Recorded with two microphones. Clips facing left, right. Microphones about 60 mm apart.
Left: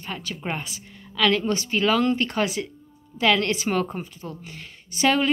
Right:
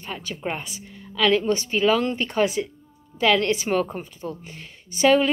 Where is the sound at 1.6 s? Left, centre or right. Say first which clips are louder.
Right 1 dB; right.